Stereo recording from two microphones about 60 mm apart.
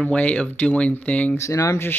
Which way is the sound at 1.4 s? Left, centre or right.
Left.